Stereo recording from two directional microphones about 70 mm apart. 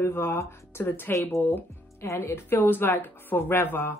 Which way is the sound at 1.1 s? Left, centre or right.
Left.